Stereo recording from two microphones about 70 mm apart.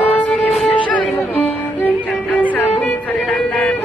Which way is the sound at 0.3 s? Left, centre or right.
Centre.